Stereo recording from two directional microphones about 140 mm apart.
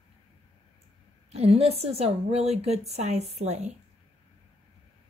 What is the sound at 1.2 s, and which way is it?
A woman's voice, 50° right (ahead or behind).